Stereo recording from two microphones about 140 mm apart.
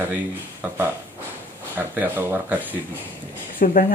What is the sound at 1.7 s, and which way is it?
A man's voice, 15° right (ahead or behind).